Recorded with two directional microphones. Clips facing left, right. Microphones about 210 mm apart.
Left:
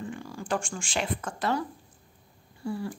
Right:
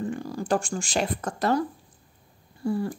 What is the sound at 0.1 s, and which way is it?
Speech, 40° right (ahead or behind).